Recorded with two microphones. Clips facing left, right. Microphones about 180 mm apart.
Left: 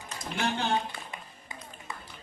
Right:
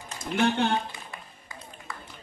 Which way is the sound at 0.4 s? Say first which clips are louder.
Right 6 dB; 60° right (ahead or behind).